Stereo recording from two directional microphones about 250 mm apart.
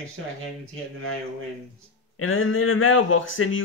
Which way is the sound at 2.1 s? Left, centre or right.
Left.